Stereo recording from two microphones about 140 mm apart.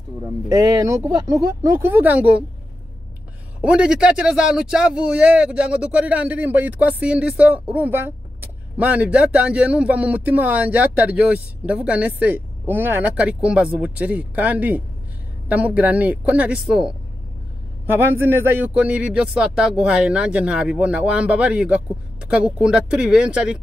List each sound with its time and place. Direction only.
0.5 s speech: 20° right (ahead or behind)
3.6 s speech: 5° right (ahead or behind)
17.9 s speech: 15° right (ahead or behind)